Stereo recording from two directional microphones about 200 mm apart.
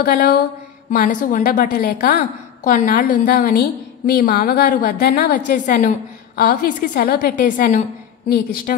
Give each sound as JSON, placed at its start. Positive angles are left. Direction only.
{"t": 0.0, "sound": "a woman's voice", "side_deg": 45}